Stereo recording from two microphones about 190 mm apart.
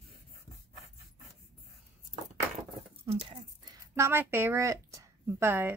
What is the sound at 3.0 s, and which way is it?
Speech, 30° right (ahead or behind).